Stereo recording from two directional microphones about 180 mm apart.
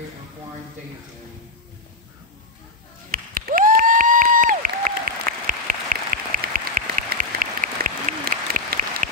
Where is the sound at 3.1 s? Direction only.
55° right (ahead or behind).